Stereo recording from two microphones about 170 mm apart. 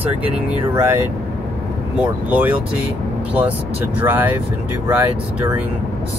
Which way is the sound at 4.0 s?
10° right (ahead or behind).